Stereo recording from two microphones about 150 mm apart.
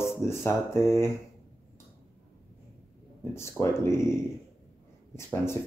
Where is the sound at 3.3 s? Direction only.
15° left (ahead or behind).